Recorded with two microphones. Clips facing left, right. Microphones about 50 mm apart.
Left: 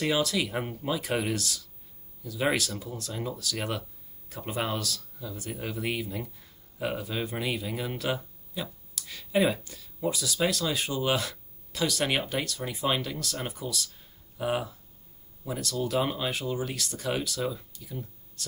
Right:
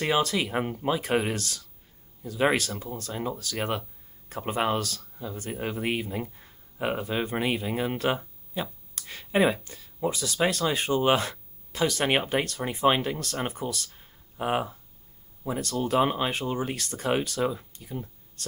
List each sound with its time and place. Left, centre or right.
0.0 s speech: right
1.3 s speech: right